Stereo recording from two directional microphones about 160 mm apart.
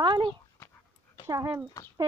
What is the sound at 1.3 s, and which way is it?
Speech, 15° right (ahead or behind).